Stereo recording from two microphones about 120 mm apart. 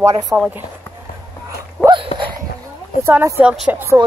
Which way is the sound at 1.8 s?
40° right (ahead or behind).